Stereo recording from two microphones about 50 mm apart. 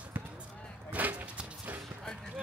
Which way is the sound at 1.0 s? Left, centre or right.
Right.